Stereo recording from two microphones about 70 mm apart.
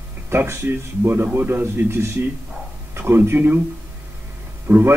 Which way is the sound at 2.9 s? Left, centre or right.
Right.